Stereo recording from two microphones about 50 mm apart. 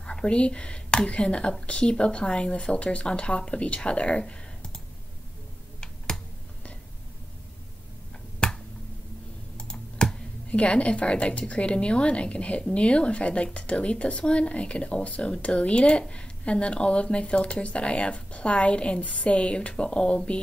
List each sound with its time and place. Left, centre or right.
0.0 s a woman's voice: centre
8.4 s finger snapping: centre
9.6 s computer keyboard: centre
10.5 s a woman's voice: left